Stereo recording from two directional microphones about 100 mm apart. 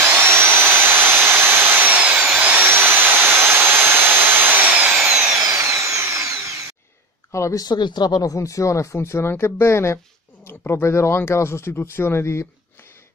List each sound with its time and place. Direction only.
0.0 s vacuum cleaner: 25° right (ahead or behind)
5.6 s drill: 30° right (ahead or behind)
7.3 s speech: 35° left (ahead or behind)